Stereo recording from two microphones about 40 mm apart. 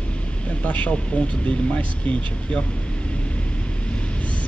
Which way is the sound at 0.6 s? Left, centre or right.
Left.